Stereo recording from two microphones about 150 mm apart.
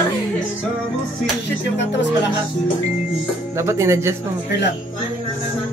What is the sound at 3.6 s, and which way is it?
Speech, 20° right (ahead or behind).